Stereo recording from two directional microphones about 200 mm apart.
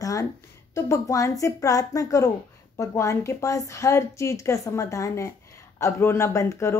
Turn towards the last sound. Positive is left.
turn(degrees=15)  # may be behind; listen again after turning